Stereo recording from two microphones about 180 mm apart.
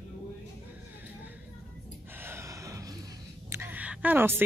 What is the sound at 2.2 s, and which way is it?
Gasp, 15° right (ahead or behind).